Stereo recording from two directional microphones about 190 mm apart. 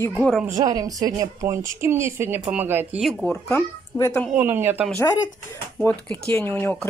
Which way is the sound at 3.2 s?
10° left (ahead or behind).